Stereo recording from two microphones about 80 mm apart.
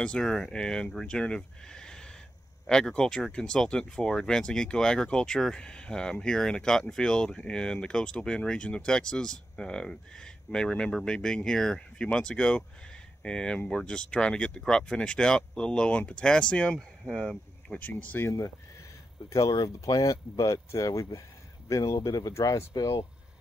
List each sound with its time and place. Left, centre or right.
0.0 s speech: centre
19.2 s speech: left